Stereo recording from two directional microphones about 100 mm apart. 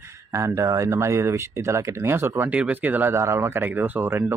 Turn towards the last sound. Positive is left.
turn(degrees=-20)  # may be behind; listen again after turning